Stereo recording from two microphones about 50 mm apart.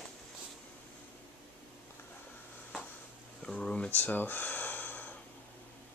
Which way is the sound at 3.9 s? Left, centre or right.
Left.